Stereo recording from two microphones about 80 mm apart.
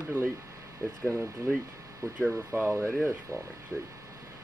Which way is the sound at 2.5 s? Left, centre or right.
Right.